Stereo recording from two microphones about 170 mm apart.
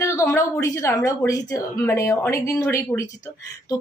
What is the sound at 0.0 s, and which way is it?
A woman's voice, 15° left (ahead or behind).